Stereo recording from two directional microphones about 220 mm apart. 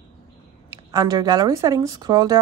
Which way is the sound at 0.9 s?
15° right (ahead or behind).